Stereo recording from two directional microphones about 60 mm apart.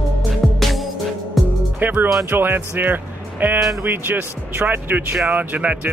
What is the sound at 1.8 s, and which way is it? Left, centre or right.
Music, right.